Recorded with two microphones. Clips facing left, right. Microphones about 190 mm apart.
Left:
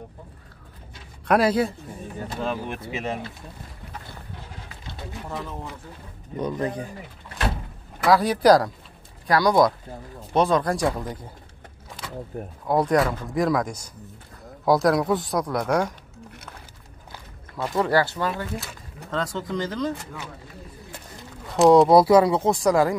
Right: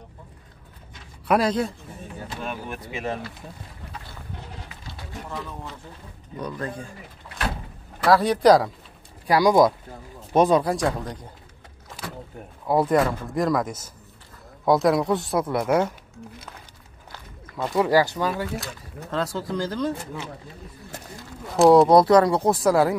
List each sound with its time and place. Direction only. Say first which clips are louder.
1.2 s speech: left 2 dB; centre (ahead or behind)
2.4 s speech: left 5 dB; 20° left (ahead or behind)
6.3 s speech: left 5 dB; 20° left (ahead or behind)
8.0 s speech: right 1 dB; centre (ahead or behind)
9.3 s speech: right 2 dB; 10° right (ahead or behind)
12.6 s speech: right 1 dB; 5° right (ahead or behind)
17.1 s walk: right 1 dB; 5° left (ahead or behind)
17.7 s speech: right 2 dB; 10° right (ahead or behind)
21.5 s speech: even; centre (ahead or behind)